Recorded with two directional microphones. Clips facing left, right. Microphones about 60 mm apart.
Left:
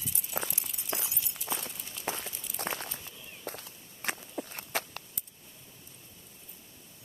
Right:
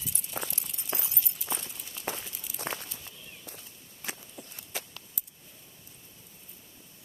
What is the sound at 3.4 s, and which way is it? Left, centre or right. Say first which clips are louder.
Walk: left 7 dB; left.